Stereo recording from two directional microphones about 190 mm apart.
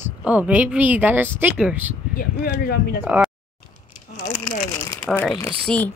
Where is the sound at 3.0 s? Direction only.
10° right (ahead or behind).